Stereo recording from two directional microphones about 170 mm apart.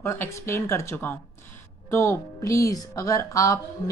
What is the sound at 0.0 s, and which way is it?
A woman's voice, 15° left (ahead or behind).